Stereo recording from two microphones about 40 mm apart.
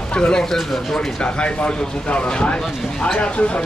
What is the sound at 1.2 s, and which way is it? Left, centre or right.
Speech, left.